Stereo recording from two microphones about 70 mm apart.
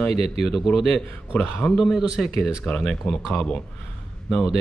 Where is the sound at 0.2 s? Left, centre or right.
Centre.